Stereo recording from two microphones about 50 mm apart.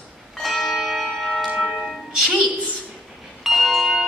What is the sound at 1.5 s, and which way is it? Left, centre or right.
Music, centre.